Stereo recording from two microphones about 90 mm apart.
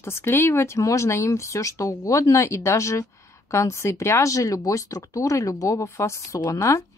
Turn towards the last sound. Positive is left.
turn(degrees=35)  # may be behind; listen again after turning